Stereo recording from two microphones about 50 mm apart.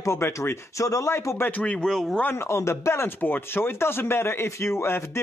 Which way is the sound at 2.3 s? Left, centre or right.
Left.